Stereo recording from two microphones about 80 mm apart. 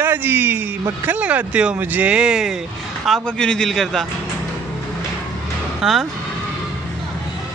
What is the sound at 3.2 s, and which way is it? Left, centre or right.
Speech, centre.